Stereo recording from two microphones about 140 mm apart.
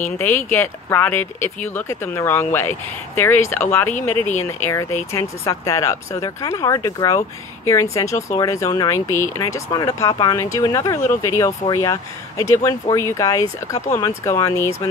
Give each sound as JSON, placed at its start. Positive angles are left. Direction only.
{"t": 0.2, "sound": "speech", "side_deg": 15}